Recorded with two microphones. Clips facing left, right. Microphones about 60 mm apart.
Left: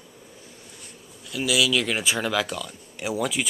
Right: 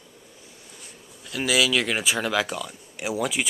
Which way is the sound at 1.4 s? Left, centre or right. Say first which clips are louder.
Right 1 dB; right.